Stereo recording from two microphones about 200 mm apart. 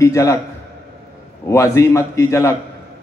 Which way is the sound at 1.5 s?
15° left (ahead or behind).